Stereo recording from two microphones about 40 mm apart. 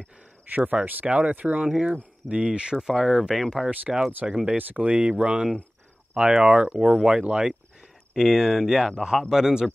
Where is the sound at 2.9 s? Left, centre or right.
Centre.